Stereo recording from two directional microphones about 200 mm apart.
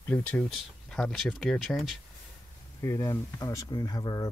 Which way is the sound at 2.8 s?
15° left (ahead or behind).